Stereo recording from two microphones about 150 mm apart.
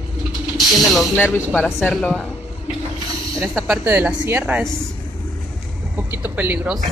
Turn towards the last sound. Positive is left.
turn(degrees=-10)  # may be behind; listen again after turning